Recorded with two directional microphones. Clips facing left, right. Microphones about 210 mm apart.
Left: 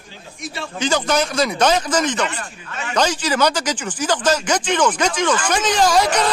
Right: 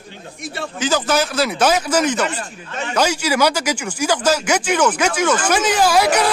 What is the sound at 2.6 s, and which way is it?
Speech, 35° right (ahead or behind).